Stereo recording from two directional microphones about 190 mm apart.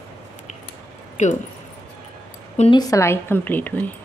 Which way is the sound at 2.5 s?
35° left (ahead or behind).